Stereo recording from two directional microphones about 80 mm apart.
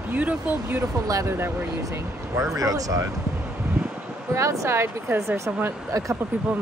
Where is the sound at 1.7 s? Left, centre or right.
Right.